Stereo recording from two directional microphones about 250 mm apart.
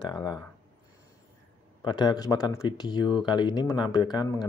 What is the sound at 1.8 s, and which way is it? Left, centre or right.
Speech, centre.